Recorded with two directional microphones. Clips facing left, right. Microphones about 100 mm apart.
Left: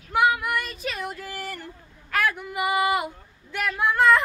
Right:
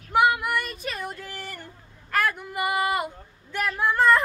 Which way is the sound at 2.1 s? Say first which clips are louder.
Even; centre (ahead or behind).